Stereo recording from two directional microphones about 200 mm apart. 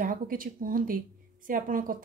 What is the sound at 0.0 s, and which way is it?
Speech, 45° right (ahead or behind).